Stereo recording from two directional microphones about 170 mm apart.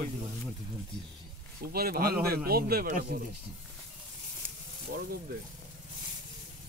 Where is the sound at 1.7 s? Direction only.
65° right (ahead or behind).